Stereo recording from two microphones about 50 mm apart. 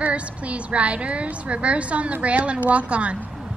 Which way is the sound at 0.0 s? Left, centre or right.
Right.